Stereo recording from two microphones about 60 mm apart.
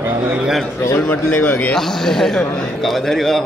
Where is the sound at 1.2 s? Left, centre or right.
Left.